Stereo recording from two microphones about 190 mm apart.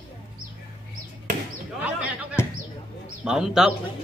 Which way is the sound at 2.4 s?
10° left (ahead or behind).